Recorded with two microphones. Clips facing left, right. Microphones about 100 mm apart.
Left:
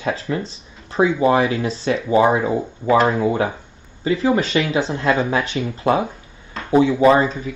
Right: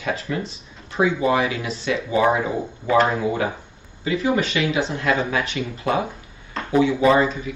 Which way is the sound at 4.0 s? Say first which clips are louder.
Left 3 dB; 35° left (ahead or behind).